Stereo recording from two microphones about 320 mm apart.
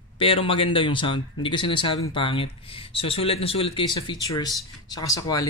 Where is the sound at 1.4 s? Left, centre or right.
Centre.